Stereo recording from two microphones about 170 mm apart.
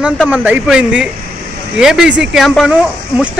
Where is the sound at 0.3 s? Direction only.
10° right (ahead or behind).